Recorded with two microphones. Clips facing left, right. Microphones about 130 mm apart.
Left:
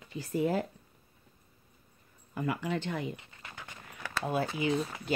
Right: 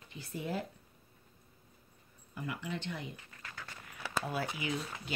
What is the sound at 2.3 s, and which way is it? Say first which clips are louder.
Speech: left 7 dB; 70° left (ahead or behind).